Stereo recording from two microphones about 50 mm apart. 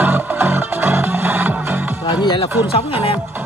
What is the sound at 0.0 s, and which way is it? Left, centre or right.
Music, right.